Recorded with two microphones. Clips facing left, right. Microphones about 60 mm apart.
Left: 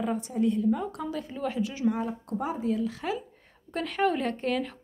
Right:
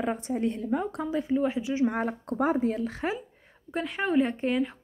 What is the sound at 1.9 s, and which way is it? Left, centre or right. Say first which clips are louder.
Speech: even; right.